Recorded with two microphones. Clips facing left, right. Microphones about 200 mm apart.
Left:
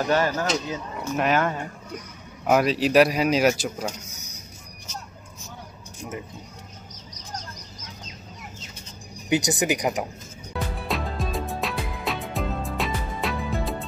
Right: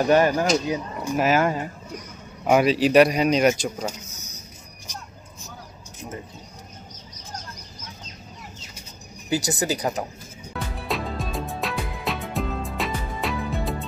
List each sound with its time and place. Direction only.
0.0 s speech: 15° right (ahead or behind); by 3.8 s 5° left (ahead or behind)
4.1 s vehicle: 10° left (ahead or behind)
9.3 s speech: 20° left (ahead or behind)
10.9 s music: centre (ahead or behind)